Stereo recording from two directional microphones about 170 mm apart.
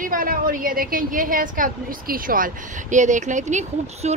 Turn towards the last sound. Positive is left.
turn(degrees=-40)  # may be behind; listen again after turning